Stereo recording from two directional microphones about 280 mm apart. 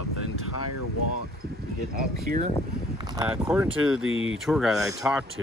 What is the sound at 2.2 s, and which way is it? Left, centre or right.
Speech, right.